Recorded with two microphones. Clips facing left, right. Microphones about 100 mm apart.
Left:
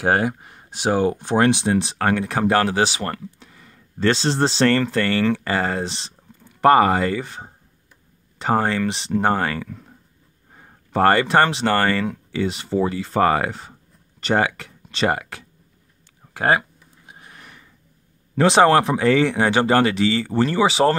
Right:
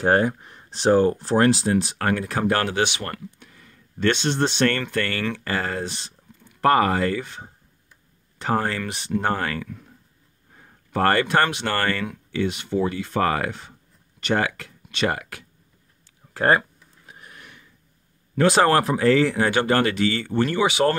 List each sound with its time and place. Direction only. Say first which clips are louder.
0.0 s speech: even; 10° left (ahead or behind); by 3.4 s 30° left (ahead or behind)
3.5 s a sound: left 2 dB; 25° left (ahead or behind)
4.6 s speech: left 4 dB; 30° left (ahead or behind)
5.3 s speech: left 5 dB; 20° left (ahead or behind)
8.4 s speech: left 4 dB; 20° left (ahead or behind)
10.9 s speech: left 3 dB; 20° left (ahead or behind)
13.5 s speech: left 1 dB; 30° left (ahead or behind)
14.3 s speech: left 3 dB; 20° left (ahead or behind)
16.3 s a sound: even; 15° left (ahead or behind)
18.4 s speech: left 3 dB; 20° left (ahead or behind)